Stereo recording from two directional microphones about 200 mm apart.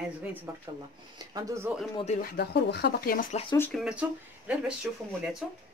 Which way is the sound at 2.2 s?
55° left (ahead or behind).